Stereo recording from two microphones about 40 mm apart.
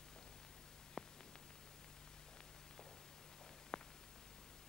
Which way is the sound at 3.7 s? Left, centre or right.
Centre.